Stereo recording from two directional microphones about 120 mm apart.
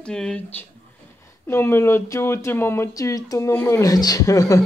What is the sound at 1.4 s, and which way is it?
Speech, 20° left (ahead or behind).